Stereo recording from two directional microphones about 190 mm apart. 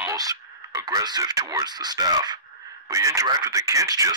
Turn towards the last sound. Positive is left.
turn(degrees=-15)  # may be behind; listen again after turning